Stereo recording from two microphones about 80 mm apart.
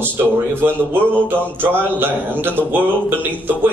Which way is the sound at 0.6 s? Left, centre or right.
Right.